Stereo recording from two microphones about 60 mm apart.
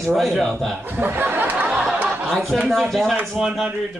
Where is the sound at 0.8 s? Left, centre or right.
Right.